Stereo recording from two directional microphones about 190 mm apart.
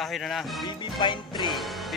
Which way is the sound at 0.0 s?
Centre (ahead or behind).